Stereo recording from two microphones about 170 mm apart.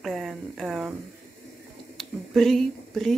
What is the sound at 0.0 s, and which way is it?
Speech, centre (ahead or behind).